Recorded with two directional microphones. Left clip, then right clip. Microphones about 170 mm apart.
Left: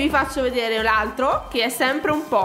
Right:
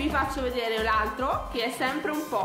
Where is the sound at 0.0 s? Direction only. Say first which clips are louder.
Left 7 dB; 40° left (ahead or behind).